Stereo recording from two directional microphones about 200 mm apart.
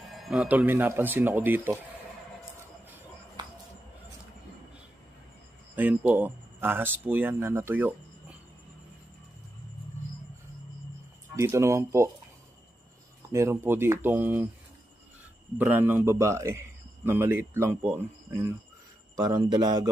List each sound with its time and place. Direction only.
0.1 s a man's voice: centre (ahead or behind)
5.8 s speech: 10° right (ahead or behind)
11.3 s a man's voice: 15° right (ahead or behind)
13.3 s a man's voice: 10° right (ahead or behind)
15.5 s a man's voice: 10° right (ahead or behind)